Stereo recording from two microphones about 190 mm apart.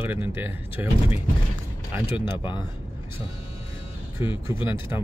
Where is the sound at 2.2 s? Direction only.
25° left (ahead or behind).